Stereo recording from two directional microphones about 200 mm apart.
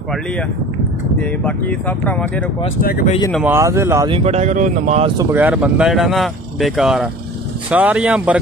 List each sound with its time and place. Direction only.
1.2 s speech: 5° left (ahead or behind)
2.8 s speech: 45° left (ahead or behind)
3.4 s speech: 15° right (ahead or behind)
4.1 s speech: 30° right (ahead or behind)
5.1 s speech: 15° right (ahead or behind)